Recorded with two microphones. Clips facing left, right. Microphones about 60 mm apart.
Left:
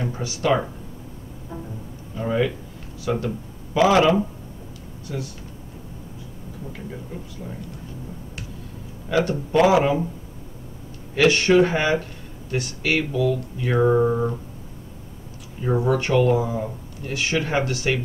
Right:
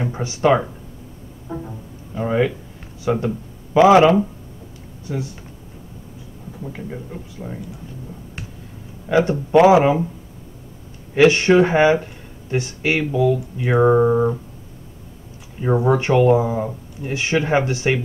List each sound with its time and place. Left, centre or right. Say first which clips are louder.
0.0 s speech: right 6 dB; right
2.1 s speech: right 3 dB; right
6.7 s speech: right 3 dB; right
9.1 s speech: right 5 dB; right
11.1 s speech: right 3 dB; right
15.6 s speech: right 4 dB; right